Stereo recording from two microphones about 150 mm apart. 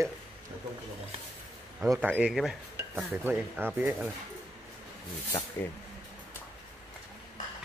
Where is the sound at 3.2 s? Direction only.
15° right (ahead or behind).